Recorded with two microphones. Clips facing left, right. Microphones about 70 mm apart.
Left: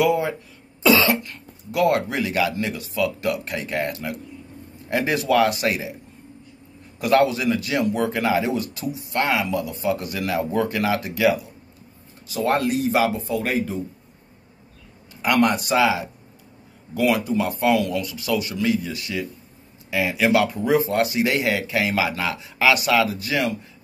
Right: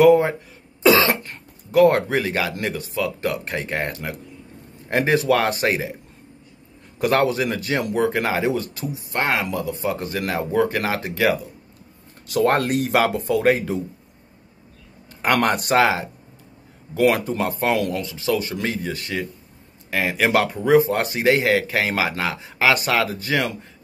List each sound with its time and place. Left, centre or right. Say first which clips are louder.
0.0 s speech: right 6 dB; right
7.0 s speech: left 1 dB; right
12.3 s speech: right 3 dB; right
15.2 s speech: even; right
18.0 s speech: right 2 dB; right